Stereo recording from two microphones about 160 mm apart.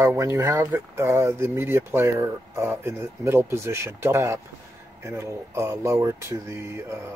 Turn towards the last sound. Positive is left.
turn(degrees=-15)  # may be behind; listen again after turning